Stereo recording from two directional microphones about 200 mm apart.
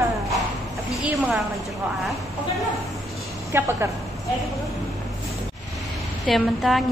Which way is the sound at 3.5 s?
10° right (ahead or behind).